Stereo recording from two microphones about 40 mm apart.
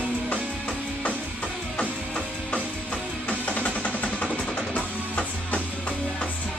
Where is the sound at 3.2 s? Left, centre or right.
Left.